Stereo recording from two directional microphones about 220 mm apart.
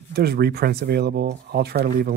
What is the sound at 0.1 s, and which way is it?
Speech, 45° right (ahead or behind).